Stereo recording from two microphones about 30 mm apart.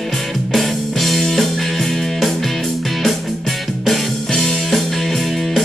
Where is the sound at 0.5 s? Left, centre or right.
Centre.